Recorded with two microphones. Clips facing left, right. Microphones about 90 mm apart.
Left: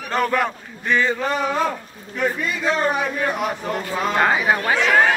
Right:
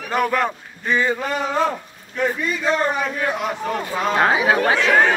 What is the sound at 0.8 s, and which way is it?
Speech, 20° right (ahead or behind).